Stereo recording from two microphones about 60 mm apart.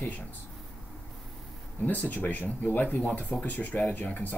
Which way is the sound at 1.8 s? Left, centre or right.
Left.